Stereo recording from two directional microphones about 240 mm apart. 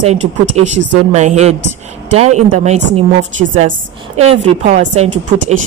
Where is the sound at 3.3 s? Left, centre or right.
Right.